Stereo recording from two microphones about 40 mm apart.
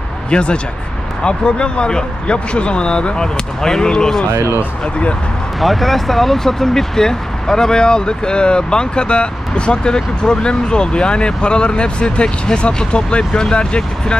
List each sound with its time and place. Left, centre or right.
0.3 s speech: left
5.6 s speech: centre; by 14.1 s left